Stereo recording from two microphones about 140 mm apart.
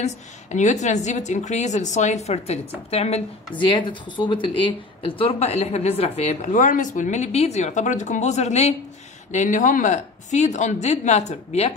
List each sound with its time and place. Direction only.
0.0 s a woman's voice: 60° left (ahead or behind)
3.5 s a woman's voice: 35° left (ahead or behind); by 11.7 s 50° left (ahead or behind)